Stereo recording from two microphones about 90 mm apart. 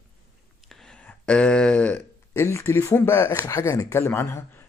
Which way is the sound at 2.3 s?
30° left (ahead or behind).